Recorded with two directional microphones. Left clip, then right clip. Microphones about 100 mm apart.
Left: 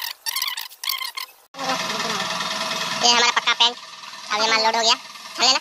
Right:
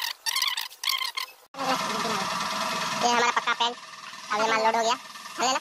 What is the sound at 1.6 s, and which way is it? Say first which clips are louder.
Vehicle: left 3 dB; 35° left (ahead or behind).